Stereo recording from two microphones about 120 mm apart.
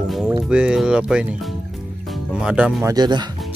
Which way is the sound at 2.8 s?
35° right (ahead or behind).